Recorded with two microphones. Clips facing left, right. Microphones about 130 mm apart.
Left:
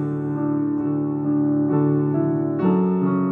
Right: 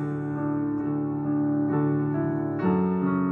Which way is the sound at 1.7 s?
15° left (ahead or behind).